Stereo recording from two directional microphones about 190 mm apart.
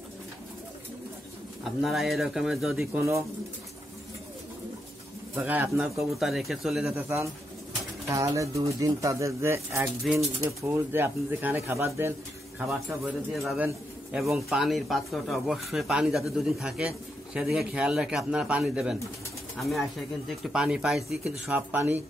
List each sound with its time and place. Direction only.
1.6 s speech: centre (ahead or behind)
3.0 s speech: 15° right (ahead or behind)
5.3 s speech: 10° right (ahead or behind)
8.1 s speech: 15° right (ahead or behind)
10.1 s speech: centre (ahead or behind)
10.6 s speech: 10° right (ahead or behind)
13.3 s speech: centre (ahead or behind)